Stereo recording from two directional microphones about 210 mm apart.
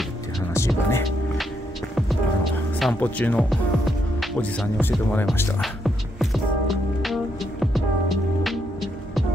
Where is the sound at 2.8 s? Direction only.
5° left (ahead or behind).